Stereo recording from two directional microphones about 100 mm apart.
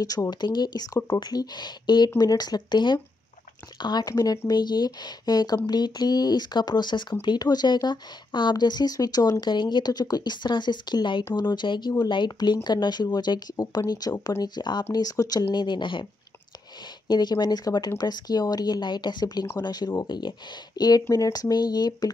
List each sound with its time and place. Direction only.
0.0 s speech: 40° left (ahead or behind)
14.9 s speech: 35° left (ahead or behind)
15.5 s speech: 50° left (ahead or behind)
17.1 s speech: 45° left (ahead or behind)